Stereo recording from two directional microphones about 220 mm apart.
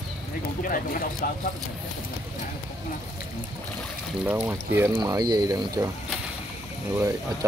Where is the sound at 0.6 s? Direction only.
40° left (ahead or behind).